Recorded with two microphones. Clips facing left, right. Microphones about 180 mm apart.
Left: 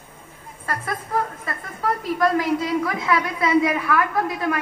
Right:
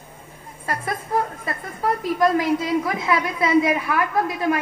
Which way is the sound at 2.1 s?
20° right (ahead or behind).